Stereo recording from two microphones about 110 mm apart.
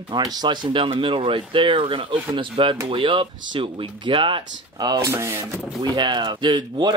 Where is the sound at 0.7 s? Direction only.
55° right (ahead or behind).